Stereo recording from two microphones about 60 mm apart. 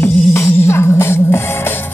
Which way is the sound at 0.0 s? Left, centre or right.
Left.